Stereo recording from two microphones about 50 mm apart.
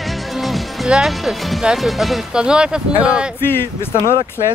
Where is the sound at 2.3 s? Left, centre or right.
Centre.